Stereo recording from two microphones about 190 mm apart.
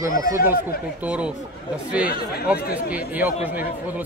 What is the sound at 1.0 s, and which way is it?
Speech, 5° right (ahead or behind).